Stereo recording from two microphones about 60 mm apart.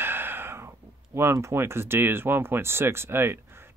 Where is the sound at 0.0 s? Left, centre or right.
Right.